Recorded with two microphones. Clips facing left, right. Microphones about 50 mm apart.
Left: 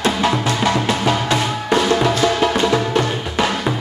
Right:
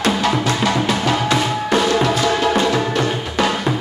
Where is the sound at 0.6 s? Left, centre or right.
Centre.